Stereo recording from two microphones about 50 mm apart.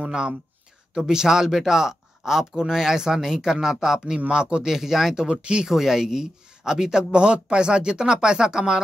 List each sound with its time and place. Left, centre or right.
0.0 s speech: centre
4.7 s speech: centre
5.1 s speech: centre
5.7 s speech: centre